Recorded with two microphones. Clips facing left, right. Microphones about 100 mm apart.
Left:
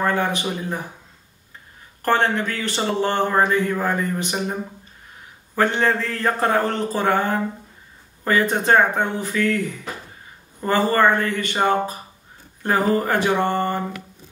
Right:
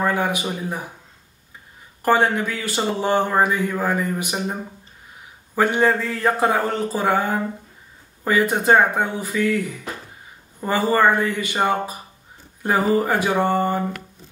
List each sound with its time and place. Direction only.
0.0 s speech: 10° right (ahead or behind)
2.0 s speech: 10° right (ahead or behind)
10.9 s speech: 10° right (ahead or behind)